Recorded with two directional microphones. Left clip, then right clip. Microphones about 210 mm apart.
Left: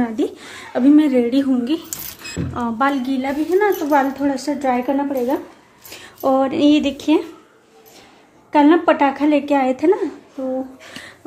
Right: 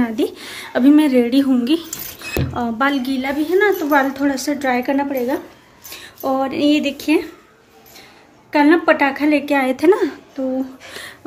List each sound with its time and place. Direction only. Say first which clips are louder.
0.0 s a woman's voice: right 1 dB; 5° right (ahead or behind)
2.2 s speech: right 2 dB; 10° left (ahead or behind)
5.9 s speech: left 3 dB; 25° left (ahead or behind)
8.5 s speech: even; 15° left (ahead or behind)